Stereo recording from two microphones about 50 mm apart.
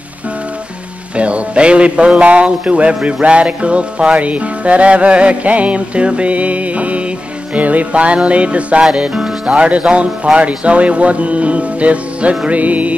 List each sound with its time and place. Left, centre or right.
1.1 s speech: right
12.4 s music: right